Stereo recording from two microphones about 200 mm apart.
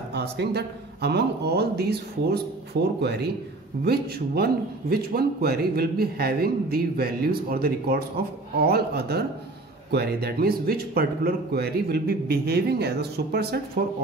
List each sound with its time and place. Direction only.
0.1 s speech: 55° right (ahead or behind)